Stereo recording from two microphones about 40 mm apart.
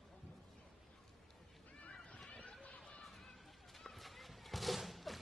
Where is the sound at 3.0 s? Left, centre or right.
Centre.